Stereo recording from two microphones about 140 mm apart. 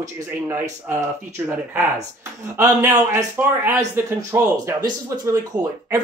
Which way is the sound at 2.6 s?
20° right (ahead or behind).